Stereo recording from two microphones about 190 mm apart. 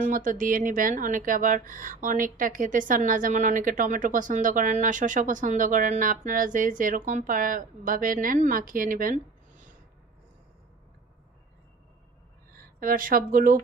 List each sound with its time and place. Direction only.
0.0 s speech: 45° right (ahead or behind)
12.5 s speech: 45° right (ahead or behind)